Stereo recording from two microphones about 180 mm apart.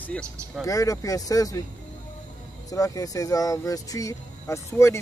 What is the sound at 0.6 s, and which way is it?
Speech, 20° left (ahead or behind).